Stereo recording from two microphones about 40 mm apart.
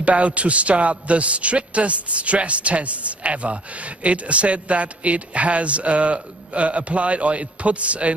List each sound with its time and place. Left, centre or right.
0.0 s a man's voice: right